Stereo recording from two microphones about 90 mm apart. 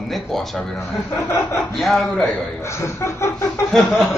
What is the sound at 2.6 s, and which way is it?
Chuckle, 30° left (ahead or behind).